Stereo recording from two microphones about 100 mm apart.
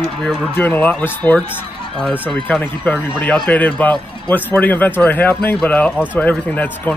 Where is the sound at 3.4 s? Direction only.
15° left (ahead or behind).